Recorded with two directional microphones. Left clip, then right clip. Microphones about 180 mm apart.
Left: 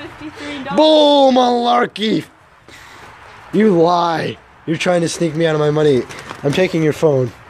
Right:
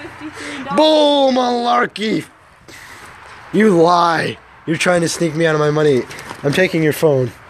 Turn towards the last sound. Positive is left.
turn(degrees=5)  # may be behind; listen again after turning